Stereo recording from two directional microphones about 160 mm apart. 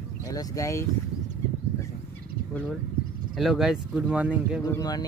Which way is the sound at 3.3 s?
Centre (ahead or behind).